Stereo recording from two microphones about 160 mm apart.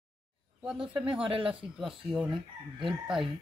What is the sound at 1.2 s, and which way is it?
Speech, 35° right (ahead or behind).